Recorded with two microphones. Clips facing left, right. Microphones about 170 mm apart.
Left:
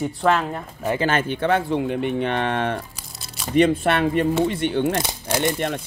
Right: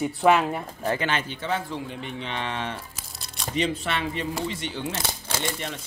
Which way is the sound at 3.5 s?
55° left (ahead or behind).